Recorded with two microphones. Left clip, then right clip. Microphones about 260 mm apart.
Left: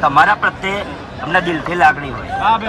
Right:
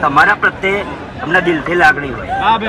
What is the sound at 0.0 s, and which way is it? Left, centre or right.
A man's voice, centre.